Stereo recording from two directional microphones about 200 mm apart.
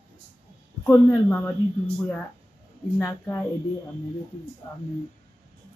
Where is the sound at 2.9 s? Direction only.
10° left (ahead or behind).